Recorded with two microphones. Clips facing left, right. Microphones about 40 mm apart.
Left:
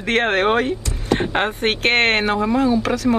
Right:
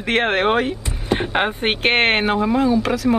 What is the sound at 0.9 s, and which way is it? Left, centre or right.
Speech, centre.